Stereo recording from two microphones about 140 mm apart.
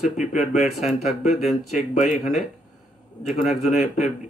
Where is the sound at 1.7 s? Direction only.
60° left (ahead or behind).